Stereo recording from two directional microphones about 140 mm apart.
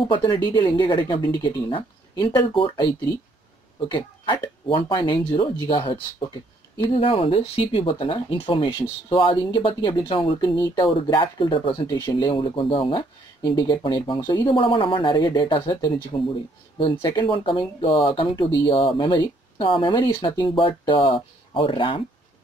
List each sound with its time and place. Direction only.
0.1 s speech: 35° left (ahead or behind)
3.9 s speech: 40° left (ahead or behind)